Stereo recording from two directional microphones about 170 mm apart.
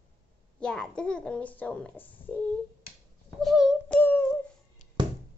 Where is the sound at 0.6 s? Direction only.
5° left (ahead or behind).